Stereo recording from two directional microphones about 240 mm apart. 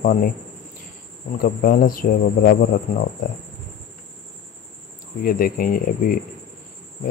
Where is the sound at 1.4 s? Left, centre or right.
Left.